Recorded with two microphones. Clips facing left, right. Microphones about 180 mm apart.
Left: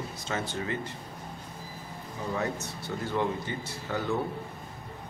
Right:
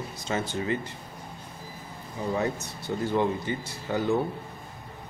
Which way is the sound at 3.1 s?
20° right (ahead or behind).